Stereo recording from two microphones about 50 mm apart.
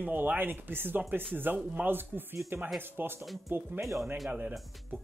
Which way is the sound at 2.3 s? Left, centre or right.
Right.